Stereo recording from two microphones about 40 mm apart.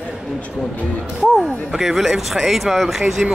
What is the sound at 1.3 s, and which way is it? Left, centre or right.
Speech, centre.